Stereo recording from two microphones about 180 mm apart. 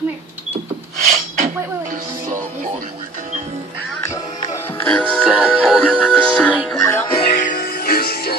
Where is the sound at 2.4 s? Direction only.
45° right (ahead or behind).